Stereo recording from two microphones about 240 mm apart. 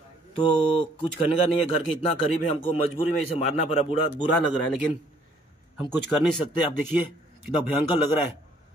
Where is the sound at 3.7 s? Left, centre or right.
Left.